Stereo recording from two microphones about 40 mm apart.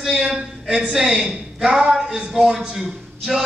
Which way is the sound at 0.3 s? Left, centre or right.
Centre.